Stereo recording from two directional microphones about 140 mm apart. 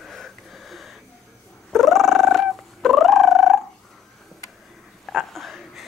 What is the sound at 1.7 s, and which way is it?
Purr, centre (ahead or behind).